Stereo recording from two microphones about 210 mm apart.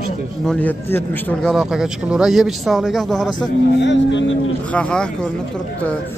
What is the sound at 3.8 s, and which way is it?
Speech, 60° left (ahead or behind).